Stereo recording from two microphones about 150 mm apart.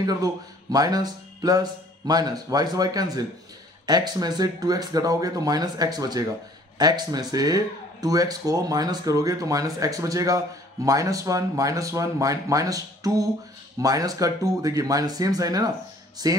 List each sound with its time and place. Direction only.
0.0 s speech: 25° right (ahead or behind)